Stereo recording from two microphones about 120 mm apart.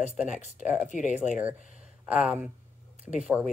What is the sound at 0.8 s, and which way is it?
Speech, 90° left.